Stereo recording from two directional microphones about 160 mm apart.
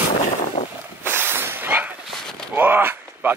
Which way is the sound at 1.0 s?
15° right (ahead or behind).